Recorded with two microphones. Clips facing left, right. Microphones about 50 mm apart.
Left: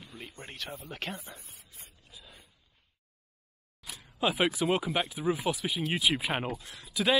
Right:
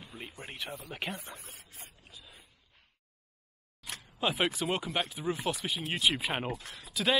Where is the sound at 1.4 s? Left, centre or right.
Right.